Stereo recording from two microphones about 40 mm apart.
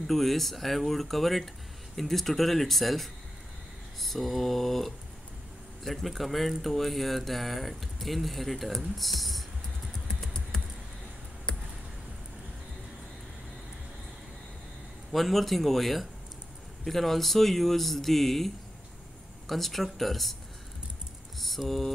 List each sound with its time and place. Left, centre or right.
0.0 s speech: centre
10.5 s computer keyboard: centre
15.1 s speech: centre
21.4 s typing: centre